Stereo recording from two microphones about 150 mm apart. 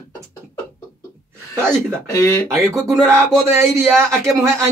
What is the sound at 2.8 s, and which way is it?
Speech, 15° right (ahead or behind).